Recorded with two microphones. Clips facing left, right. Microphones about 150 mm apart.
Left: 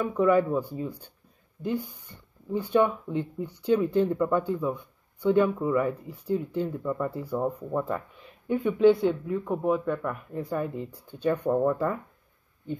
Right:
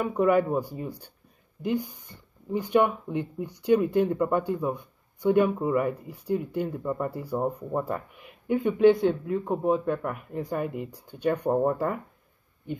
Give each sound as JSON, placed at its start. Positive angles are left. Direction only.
{"t": 0.3, "sound": "speech", "side_deg": -15}
{"t": 11.5, "sound": "speech", "side_deg": -30}